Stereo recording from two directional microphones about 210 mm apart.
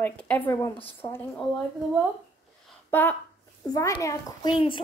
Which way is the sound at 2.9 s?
10° left (ahead or behind).